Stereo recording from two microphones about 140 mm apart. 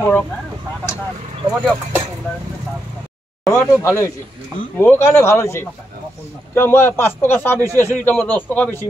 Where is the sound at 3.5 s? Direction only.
20° left (ahead or behind).